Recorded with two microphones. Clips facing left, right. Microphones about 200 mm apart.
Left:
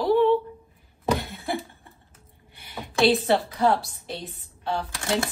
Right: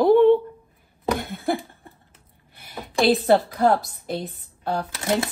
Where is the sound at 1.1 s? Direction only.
50° right (ahead or behind).